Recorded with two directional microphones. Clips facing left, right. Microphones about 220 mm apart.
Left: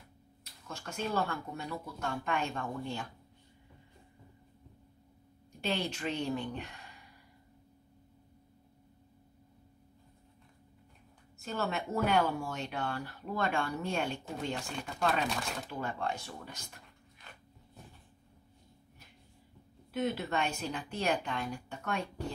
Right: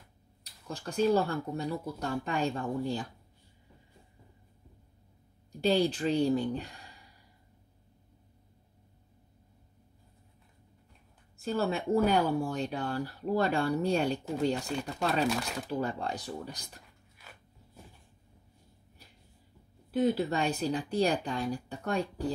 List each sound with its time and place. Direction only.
0.7 s speech: 35° right (ahead or behind)
5.5 s speech: 35° right (ahead or behind)
11.3 s speech: 30° right (ahead or behind)
15.2 s speech: centre (ahead or behind)
15.7 s speech: 35° right (ahead or behind)
19.9 s speech: 35° right (ahead or behind)